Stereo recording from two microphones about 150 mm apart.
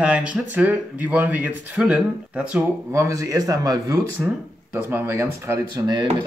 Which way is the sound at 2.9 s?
20° right (ahead or behind).